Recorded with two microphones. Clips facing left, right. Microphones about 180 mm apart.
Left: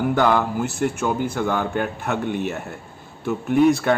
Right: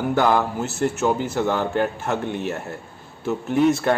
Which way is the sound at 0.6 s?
15° left (ahead or behind).